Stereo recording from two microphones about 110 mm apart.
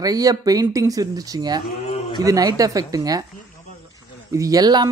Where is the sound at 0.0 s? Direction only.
35° right (ahead or behind).